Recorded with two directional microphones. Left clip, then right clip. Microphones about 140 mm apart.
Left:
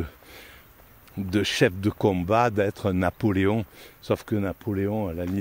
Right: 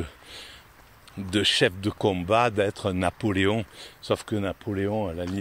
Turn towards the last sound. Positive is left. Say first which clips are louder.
# even
turn(degrees=50)  # may be behind; listen again after turning